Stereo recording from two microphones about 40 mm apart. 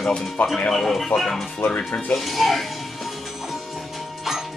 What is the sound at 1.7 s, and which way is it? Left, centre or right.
Speech, left.